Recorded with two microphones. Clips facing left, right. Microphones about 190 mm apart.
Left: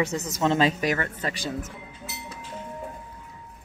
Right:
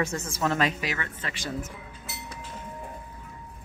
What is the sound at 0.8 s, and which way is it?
Speech, 45° left (ahead or behind).